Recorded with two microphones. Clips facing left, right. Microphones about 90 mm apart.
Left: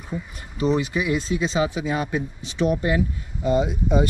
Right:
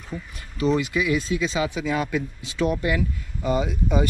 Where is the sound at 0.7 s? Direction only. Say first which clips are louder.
Even; 30° left (ahead or behind).